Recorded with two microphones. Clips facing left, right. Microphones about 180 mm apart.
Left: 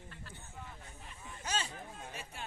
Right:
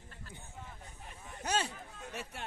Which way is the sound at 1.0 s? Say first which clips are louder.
Right 4 dB; 55° right (ahead or behind).